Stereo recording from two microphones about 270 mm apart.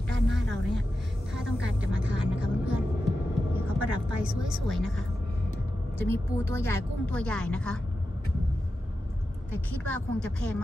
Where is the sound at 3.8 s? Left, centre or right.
Right.